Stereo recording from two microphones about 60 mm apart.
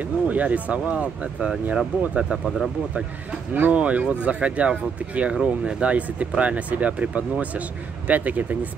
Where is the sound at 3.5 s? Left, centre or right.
Right.